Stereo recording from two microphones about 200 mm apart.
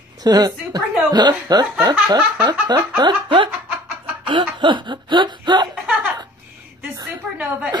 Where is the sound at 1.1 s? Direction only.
20° right (ahead or behind).